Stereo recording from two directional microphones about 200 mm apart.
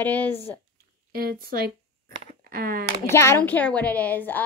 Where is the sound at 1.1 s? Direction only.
45° right (ahead or behind).